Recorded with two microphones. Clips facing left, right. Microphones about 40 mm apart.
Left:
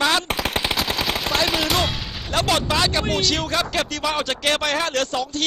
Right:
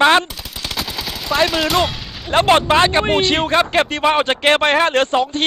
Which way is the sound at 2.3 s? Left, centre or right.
Right.